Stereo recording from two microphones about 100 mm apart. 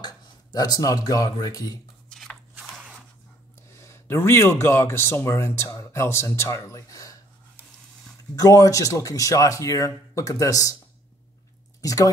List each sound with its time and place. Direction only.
0.0 s speech: 40° left (ahead or behind)
2.0 s a sound: 5° left (ahead or behind)
2.6 s a sound: 5° right (ahead or behind)
3.7 s speech: 30° left (ahead or behind)
8.4 s speech: 35° left (ahead or behind)
11.8 s speech: 35° left (ahead or behind)